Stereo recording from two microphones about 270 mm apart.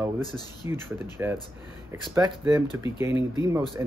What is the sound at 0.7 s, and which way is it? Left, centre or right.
Speech, centre.